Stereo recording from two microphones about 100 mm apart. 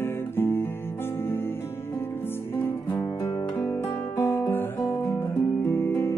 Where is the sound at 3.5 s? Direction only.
20° left (ahead or behind).